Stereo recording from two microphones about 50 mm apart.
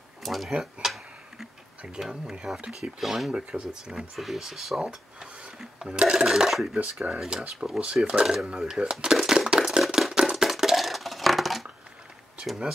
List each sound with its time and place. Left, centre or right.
0.2 s speech: centre
0.8 s tick-tock: centre
2.0 s speech: centre
3.3 s speech: centre
4.8 s a sound: centre
5.6 s speech: centre
6.8 s speech: right
7.2 s speech: centre
7.8 s speech: right
9.0 s a sound: centre